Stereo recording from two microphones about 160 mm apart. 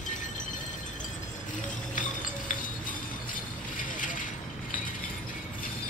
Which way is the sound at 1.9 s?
55° left (ahead or behind).